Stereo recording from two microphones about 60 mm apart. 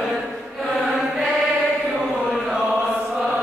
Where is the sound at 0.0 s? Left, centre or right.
Centre.